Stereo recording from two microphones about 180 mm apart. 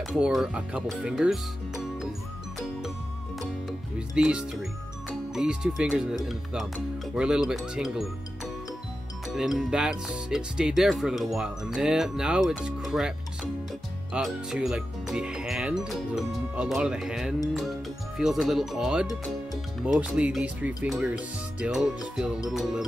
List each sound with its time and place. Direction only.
0.0 s speech: centre (ahead or behind)
3.3 s music: centre (ahead or behind)
5.3 s speech: 5° right (ahead or behind)
9.3 s speech: centre (ahead or behind)